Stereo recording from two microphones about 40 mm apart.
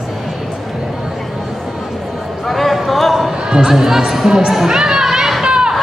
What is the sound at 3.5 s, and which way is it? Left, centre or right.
Speech, centre.